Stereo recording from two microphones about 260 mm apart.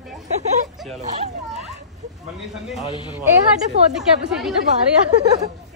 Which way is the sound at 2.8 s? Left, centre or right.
Centre.